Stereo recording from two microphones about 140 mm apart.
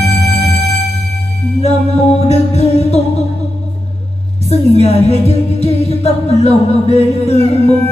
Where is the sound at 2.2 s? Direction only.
50° left (ahead or behind).